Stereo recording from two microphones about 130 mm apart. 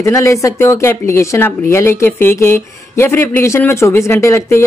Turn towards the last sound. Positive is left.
turn(degrees=20)  # may be behind; listen again after turning